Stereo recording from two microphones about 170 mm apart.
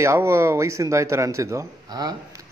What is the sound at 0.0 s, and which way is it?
Speech, 15° right (ahead or behind).